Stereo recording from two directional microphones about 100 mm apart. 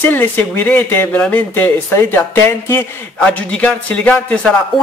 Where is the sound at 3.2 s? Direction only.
10° left (ahead or behind).